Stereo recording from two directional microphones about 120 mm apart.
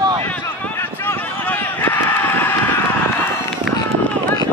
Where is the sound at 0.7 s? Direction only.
15° left (ahead or behind).